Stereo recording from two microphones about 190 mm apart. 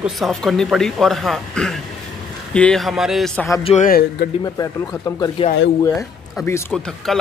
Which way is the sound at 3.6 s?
35° left (ahead or behind).